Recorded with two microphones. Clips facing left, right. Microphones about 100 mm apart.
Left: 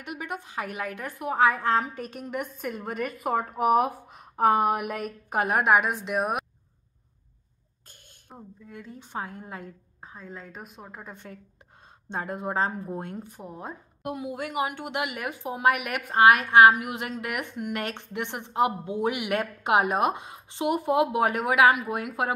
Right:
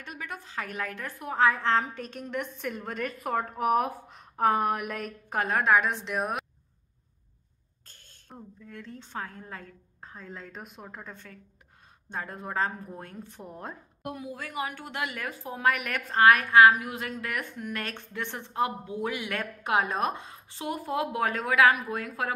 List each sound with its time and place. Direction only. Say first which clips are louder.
0.0 s a woman's voice: left 5 dB; 15° left (ahead or behind)
7.9 s a woman's voice: left 1 dB; 15° left (ahead or behind)
10.0 s a woman's voice: left 1 dB; 5° left (ahead or behind)
12.1 s a woman's voice: left 5 dB; 20° left (ahead or behind)
13.3 s a woman's voice: left 2 dB; 5° left (ahead or behind)
14.0 s a woman's voice: left 5 dB; 20° left (ahead or behind)